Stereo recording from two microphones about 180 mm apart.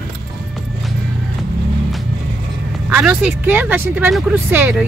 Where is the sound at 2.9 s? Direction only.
5° right (ahead or behind).